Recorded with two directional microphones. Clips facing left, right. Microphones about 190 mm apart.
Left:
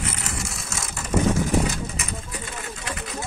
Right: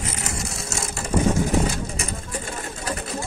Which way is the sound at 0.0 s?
30° right (ahead or behind).